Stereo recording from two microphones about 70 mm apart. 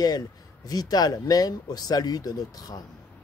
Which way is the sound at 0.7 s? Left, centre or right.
Left.